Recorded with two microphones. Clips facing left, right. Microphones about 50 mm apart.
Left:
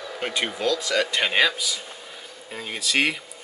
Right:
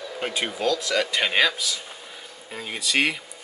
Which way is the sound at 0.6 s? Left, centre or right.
Centre.